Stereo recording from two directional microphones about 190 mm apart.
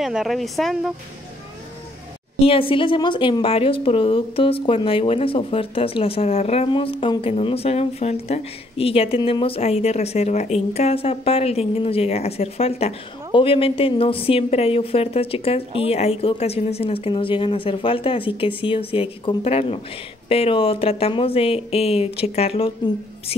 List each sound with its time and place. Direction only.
0.0 s speech: centre (ahead or behind)
2.4 s a woman's voice: 30° left (ahead or behind)